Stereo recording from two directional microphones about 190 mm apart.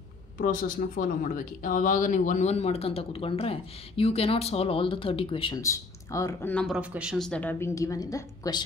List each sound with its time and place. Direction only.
0.4 s speech: 45° left (ahead or behind); by 5.6 s 30° left (ahead or behind)
5.6 s speech: 15° left (ahead or behind)